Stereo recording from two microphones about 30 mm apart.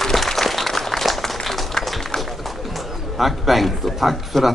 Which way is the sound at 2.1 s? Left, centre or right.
Centre.